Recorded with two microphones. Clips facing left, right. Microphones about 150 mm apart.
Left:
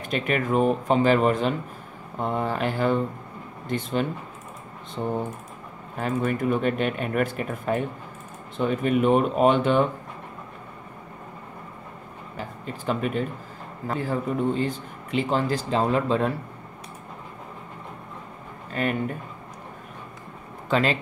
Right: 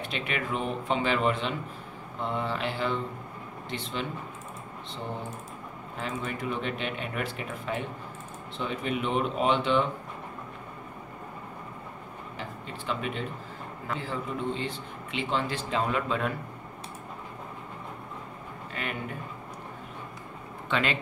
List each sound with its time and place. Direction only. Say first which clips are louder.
0.0 s speech: left 7 dB; 45° left (ahead or behind)
5.9 s speech: left 9 dB; 50° left (ahead or behind)
12.4 s a man's voice: left 6 dB; 45° left (ahead or behind)
18.7 s a man's voice: left 10 dB; 45° left (ahead or behind)
20.6 s speech: left 6 dB; 35° left (ahead or behind)